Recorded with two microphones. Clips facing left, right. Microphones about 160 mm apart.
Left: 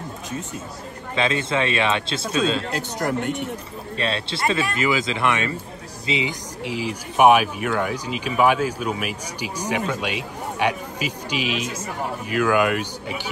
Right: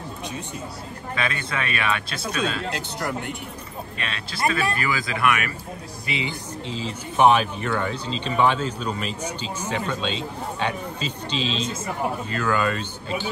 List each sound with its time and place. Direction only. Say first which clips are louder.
1.1 s speech: left 6 dB; 25° left (ahead or behind)
3.0 s speech: left 5 dB; 45° left (ahead or behind)
4.0 s speech: left 2 dB; 30° left (ahead or behind)
6.7 s speech: left 4 dB; 75° left (ahead or behind)
7.2 s speech: left 2 dB; 10° left (ahead or behind)